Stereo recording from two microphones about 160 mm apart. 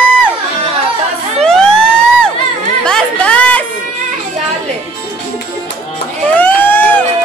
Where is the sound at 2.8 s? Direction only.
5° left (ahead or behind).